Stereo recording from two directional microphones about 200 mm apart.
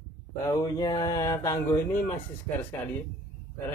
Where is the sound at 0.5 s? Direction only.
20° left (ahead or behind).